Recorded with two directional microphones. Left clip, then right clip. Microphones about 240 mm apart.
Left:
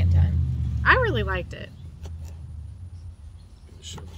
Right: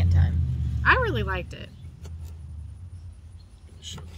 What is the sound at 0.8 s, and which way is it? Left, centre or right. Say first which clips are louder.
Speech: left 2 dB; centre.